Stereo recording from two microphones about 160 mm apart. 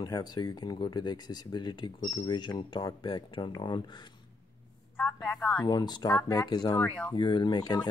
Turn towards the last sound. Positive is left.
turn(degrees=25)  # may be behind; listen again after turning